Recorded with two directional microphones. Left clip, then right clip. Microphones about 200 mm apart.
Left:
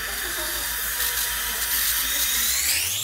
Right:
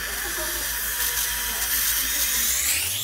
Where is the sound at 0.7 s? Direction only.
15° left (ahead or behind).